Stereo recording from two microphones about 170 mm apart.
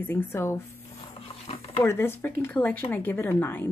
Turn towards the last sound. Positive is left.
turn(degrees=10)  # may be behind; listen again after turning